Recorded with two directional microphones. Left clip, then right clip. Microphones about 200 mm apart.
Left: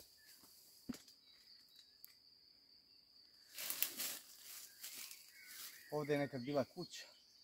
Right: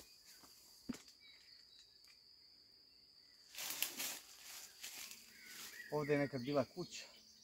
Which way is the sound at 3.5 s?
Centre (ahead or behind).